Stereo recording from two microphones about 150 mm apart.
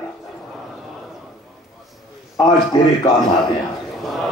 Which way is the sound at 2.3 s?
25° left (ahead or behind).